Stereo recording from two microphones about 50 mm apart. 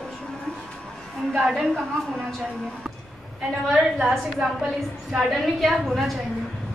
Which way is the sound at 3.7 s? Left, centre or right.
Centre.